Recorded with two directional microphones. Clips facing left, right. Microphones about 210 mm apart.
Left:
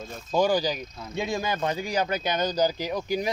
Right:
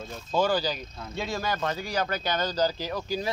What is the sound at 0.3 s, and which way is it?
Speech, 15° left (ahead or behind).